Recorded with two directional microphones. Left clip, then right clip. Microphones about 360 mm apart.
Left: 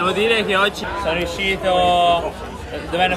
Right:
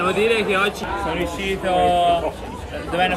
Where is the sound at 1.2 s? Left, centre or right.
Centre.